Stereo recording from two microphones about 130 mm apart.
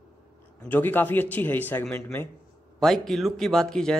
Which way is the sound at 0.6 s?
15° left (ahead or behind).